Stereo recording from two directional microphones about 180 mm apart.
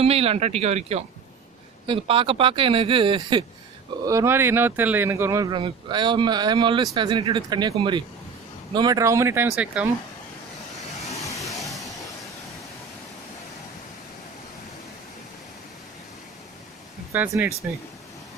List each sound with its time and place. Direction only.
0.0 s speech: 35° right (ahead or behind); by 9.8 s 10° right (ahead or behind)
10.9 s vehicle: 40° left (ahead or behind)
11.1 s vehicle: 20° left (ahead or behind)
17.1 s speech: 10° right (ahead or behind)